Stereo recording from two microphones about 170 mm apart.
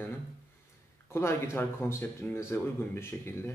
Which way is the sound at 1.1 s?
15° left (ahead or behind).